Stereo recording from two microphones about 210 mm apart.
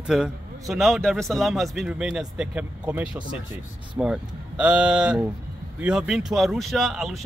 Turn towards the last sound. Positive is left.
turn(degrees=0)  # may be behind; listen again after turning